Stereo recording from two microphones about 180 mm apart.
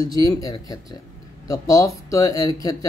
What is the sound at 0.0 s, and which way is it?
Speech, 20° left (ahead or behind).